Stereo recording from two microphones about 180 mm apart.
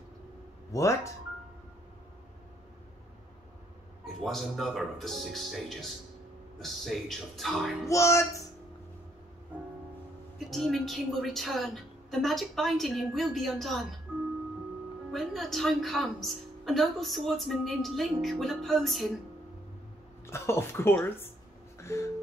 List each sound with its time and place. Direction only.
0.7 s speech: 15° left (ahead or behind)
4.0 s a woman's voice: centre (ahead or behind)
7.9 s speech: 15° left (ahead or behind)
10.5 s a woman's voice: centre (ahead or behind)
15.1 s a woman's voice: centre (ahead or behind)
20.2 s speech: 15° left (ahead or behind)
21.7 s a sound: 15° left (ahead or behind)